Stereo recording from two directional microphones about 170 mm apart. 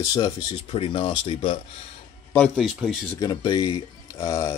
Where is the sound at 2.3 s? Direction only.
5° left (ahead or behind).